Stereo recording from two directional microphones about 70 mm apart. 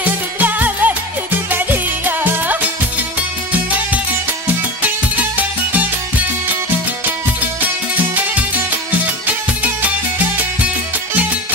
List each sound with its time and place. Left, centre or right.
0.0 s music: right